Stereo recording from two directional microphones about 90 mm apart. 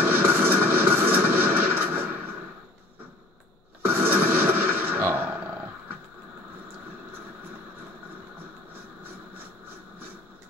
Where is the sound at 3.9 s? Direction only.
25° right (ahead or behind).